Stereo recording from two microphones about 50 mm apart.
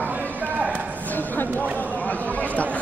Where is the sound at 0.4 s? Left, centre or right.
Right.